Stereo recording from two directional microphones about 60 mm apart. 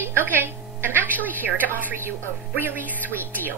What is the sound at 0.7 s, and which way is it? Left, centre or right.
A woman's voice, right.